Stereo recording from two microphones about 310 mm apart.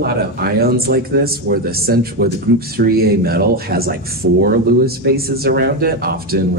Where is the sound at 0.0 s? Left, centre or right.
Right.